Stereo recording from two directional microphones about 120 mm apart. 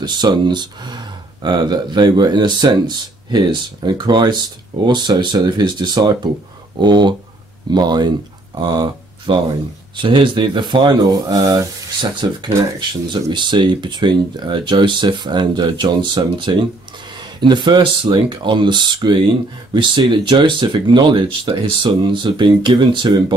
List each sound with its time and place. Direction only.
0.0 s speech: 35° right (ahead or behind)